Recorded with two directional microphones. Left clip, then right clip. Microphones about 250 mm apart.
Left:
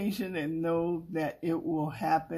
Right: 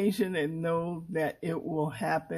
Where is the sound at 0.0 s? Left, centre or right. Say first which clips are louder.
Right 5 dB; right.